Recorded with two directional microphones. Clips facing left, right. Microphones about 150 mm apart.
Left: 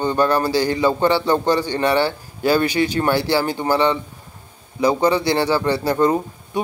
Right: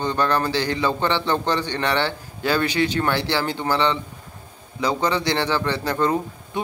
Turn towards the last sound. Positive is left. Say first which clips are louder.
# left 3 dB
turn(degrees=10)  # may be behind; listen again after turning